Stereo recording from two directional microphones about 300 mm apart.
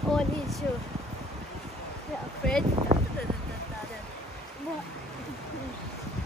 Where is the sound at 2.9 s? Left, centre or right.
Right.